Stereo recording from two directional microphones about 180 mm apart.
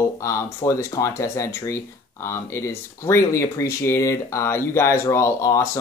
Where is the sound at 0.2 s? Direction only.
15° left (ahead or behind).